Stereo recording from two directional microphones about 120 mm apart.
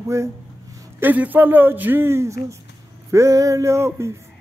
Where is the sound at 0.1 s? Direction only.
25° right (ahead or behind).